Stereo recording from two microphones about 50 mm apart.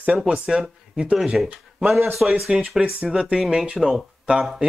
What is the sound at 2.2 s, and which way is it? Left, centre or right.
Speech, centre.